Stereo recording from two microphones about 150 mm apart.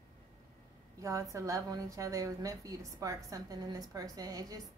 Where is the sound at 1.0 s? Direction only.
20° right (ahead or behind).